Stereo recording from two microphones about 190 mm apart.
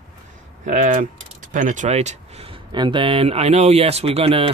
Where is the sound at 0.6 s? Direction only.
45° right (ahead or behind).